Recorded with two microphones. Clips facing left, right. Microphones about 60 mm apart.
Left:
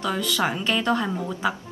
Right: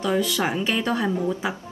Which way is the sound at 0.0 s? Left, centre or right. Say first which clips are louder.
Right 2 dB; centre.